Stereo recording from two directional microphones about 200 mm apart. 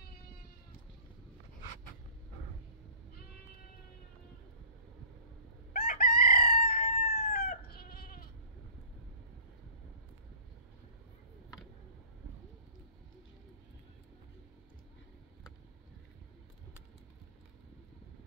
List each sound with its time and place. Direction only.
5.7 s chicken: 45° left (ahead or behind)